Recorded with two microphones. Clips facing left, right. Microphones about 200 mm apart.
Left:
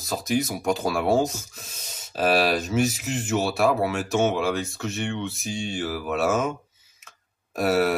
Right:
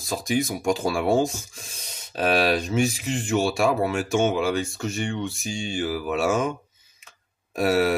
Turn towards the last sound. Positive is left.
turn(degrees=0)  # may be behind; listen again after turning